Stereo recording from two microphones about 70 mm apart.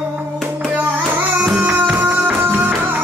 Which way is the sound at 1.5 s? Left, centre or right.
Right.